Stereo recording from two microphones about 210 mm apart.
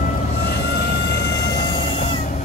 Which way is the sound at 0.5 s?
50° left (ahead or behind).